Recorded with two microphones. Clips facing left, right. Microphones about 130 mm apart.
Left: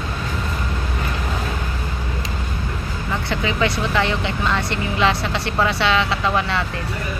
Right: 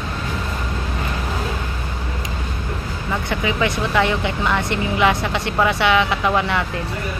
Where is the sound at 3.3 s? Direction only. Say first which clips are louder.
Even; 15° right (ahead or behind).